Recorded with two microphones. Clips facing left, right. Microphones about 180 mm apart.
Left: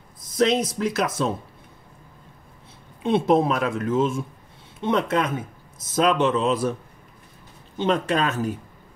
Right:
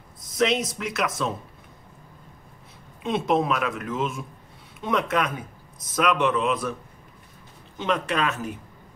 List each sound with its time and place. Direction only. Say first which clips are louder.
0.3 s speech: left 3 dB; 35° left (ahead or behind)
3.0 s speech: left 4 dB; 30° left (ahead or behind)
7.7 s speech: left 4 dB; 30° left (ahead or behind)